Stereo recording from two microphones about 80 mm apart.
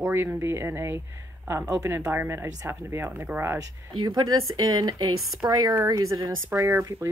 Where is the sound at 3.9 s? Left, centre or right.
Right.